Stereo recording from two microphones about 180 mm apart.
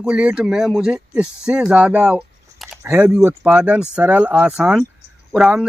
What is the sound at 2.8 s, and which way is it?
A man's voice, 10° right (ahead or behind).